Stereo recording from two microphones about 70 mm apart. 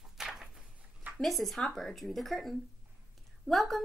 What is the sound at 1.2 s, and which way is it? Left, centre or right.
Speech, centre.